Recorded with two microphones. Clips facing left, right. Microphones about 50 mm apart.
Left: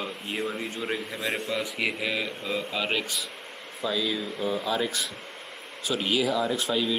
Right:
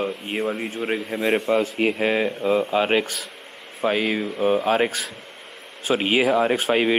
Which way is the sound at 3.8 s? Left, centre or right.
Right.